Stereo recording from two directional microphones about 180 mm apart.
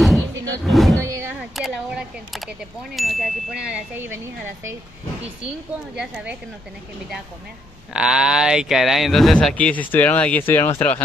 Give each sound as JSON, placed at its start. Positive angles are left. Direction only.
{"t": 0.7, "sound": "roaring cats", "side_deg": 0}
{"t": 1.0, "sound": "artillery fire", "side_deg": -15}
{"t": 1.5, "sound": "speech", "side_deg": 0}
{"t": 5.9, "sound": "a woman's voice", "side_deg": -5}
{"t": 7.9, "sound": "speech", "side_deg": -5}